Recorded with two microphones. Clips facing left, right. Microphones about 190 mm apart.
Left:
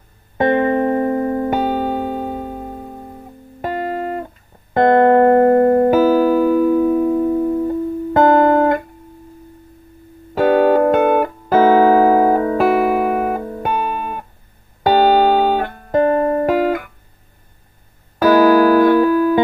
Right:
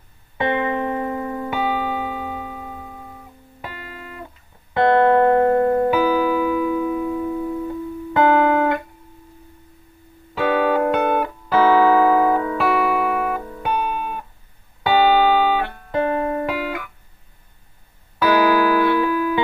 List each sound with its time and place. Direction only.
0.4 s music: 45° left (ahead or behind)
10.3 s music: 45° left (ahead or behind)
18.2 s music: 45° left (ahead or behind)